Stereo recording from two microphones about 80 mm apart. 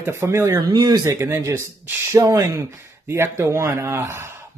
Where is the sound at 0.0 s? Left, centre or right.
Right.